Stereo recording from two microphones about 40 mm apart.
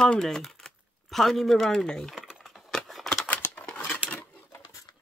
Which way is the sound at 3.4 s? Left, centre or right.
Left.